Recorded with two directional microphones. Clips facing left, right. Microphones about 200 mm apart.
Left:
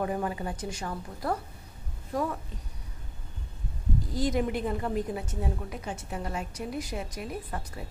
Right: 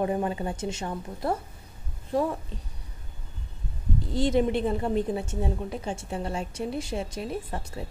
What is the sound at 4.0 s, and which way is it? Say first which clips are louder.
A woman's voice: right 5 dB; 25° right (ahead or behind).